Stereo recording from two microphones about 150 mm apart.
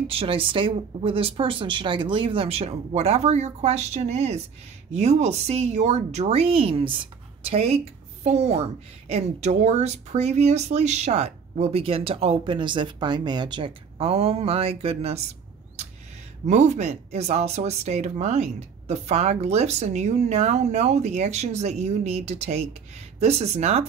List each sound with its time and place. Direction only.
0.1 s speech: 35° right (ahead or behind)
16.4 s speech: 50° right (ahead or behind)